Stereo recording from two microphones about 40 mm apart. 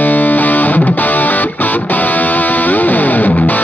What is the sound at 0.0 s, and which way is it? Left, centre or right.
Music, left.